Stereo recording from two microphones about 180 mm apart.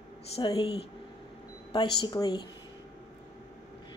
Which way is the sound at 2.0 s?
25° left (ahead or behind).